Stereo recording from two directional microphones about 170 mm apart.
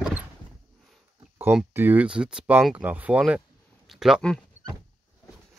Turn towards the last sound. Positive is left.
turn(degrees=5)  # may be behind; listen again after turning